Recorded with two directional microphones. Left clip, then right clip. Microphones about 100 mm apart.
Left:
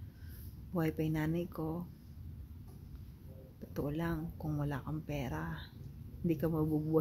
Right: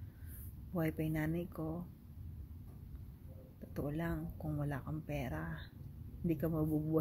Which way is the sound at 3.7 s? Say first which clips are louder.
Left 3 dB; 25° left (ahead or behind).